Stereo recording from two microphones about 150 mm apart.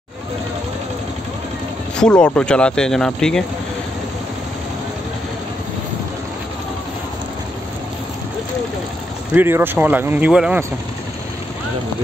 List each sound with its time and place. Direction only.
2.0 s speech: 5° left (ahead or behind)
9.3 s speech: 15° right (ahead or behind)